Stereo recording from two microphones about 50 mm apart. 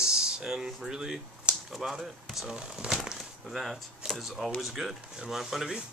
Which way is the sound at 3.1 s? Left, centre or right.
Centre.